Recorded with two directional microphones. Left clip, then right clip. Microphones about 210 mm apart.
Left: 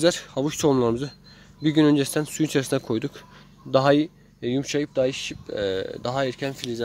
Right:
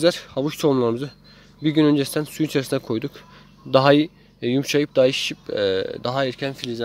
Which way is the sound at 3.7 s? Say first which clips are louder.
Right 3 dB; 10° right (ahead or behind).